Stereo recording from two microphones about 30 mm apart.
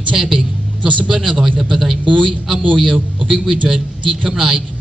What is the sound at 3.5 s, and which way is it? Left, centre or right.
Speech, centre.